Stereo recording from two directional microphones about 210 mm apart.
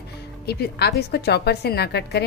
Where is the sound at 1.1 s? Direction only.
50° left (ahead or behind).